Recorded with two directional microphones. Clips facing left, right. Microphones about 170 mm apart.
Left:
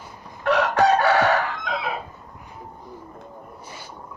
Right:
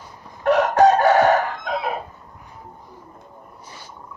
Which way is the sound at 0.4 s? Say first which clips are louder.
Right 4 dB; 50° right (ahead or behind).